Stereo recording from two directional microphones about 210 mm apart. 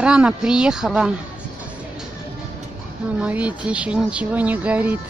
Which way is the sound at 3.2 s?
5° right (ahead or behind).